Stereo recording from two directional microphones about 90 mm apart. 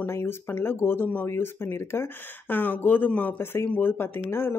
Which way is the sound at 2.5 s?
20° left (ahead or behind).